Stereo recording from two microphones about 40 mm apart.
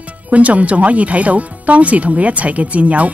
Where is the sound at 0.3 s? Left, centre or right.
Right.